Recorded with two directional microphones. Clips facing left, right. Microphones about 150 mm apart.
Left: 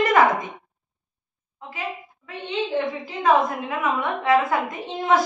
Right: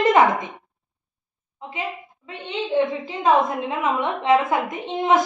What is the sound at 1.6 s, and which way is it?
Speech, 20° right (ahead or behind).